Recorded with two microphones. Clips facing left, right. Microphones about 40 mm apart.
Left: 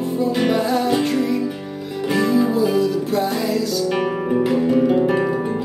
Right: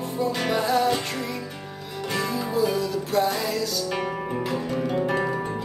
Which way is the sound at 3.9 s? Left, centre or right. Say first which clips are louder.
Left 8 dB; centre.